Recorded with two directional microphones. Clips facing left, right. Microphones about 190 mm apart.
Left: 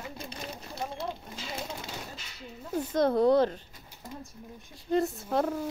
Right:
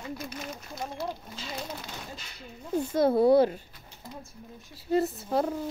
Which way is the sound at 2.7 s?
10° right (ahead or behind).